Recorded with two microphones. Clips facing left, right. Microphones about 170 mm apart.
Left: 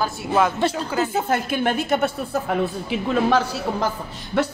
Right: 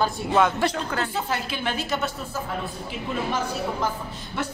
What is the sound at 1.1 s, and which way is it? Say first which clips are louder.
A woman's voice: left 6 dB; 50° left (ahead or behind).